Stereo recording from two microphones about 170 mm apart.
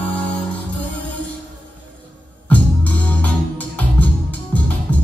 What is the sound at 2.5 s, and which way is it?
Music, 10° left (ahead or behind).